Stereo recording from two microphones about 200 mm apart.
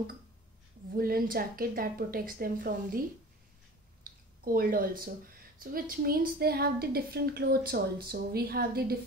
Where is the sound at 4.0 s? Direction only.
45° right (ahead or behind).